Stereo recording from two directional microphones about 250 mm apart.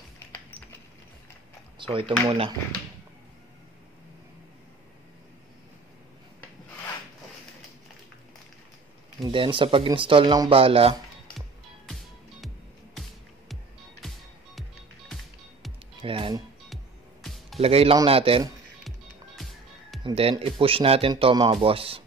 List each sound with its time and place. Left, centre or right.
1.8 s speech: centre
9.2 s speech: centre
16.0 s music: right
16.6 s music: centre
17.6 s speech: right
18.9 s music: centre
20.0 s speech: right